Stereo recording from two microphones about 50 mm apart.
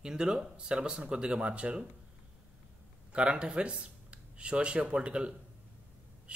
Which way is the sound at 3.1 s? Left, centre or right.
Right.